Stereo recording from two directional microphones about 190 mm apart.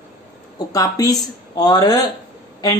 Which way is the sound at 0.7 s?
20° left (ahead or behind).